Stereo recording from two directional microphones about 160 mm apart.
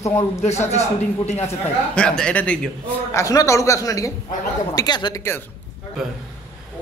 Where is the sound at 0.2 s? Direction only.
40° left (ahead or behind).